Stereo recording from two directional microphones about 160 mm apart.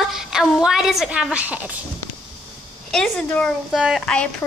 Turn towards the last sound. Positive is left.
turn(degrees=0)  # may be behind; listen again after turning